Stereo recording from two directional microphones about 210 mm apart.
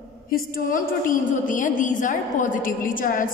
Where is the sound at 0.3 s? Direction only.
40° left (ahead or behind).